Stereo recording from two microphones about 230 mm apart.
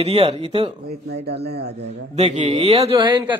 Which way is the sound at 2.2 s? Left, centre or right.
Right.